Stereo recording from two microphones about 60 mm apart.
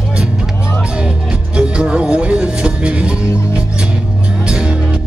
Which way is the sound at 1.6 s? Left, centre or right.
Centre.